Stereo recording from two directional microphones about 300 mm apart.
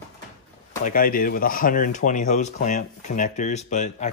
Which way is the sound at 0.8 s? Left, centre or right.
Left.